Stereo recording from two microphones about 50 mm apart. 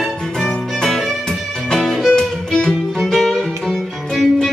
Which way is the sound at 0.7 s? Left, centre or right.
Centre.